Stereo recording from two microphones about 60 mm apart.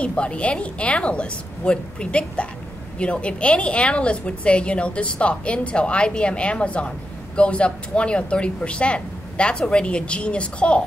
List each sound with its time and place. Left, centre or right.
0.0 s a woman's voice: centre